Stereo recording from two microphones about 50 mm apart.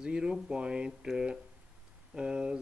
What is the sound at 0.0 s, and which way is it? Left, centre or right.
Speech, centre.